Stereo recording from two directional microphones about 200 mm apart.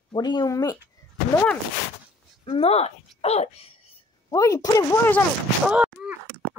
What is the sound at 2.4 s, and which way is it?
Speech, 30° left (ahead or behind).